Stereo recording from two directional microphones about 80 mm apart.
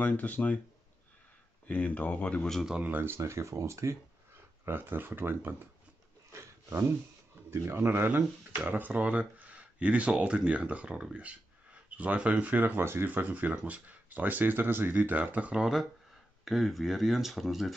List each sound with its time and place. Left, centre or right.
0.0 s speech: centre
1.7 s speech: centre
2.7 s speech: centre
3.0 s speech: right
4.6 s speech: right
6.3 s a sound: right
7.5 s speech: right; by 17.7 s centre